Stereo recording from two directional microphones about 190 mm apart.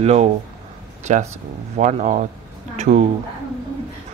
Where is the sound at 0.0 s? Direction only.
35° right (ahead or behind).